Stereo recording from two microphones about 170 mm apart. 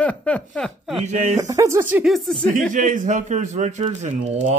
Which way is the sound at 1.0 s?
45° right (ahead or behind).